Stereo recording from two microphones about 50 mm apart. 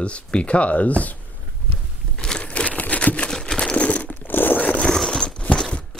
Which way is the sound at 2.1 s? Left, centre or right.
Centre.